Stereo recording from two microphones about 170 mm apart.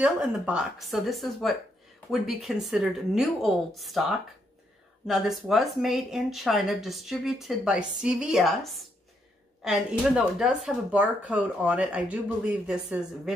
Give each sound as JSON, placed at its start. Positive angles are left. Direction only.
{"t": 0.0, "sound": "speech", "side_deg": -5}